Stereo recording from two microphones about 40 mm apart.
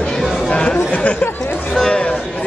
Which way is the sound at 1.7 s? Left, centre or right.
Centre.